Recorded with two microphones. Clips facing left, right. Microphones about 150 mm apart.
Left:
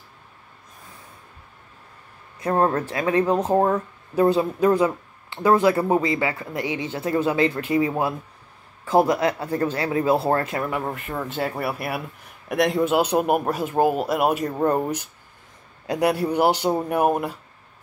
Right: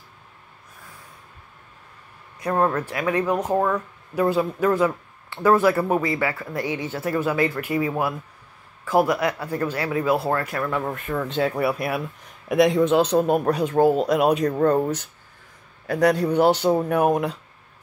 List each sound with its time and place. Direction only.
2.4 s speech: 30° left (ahead or behind)
11.1 s speech: 10° left (ahead or behind)